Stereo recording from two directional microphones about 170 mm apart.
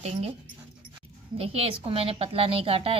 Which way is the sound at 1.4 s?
35° right (ahead or behind).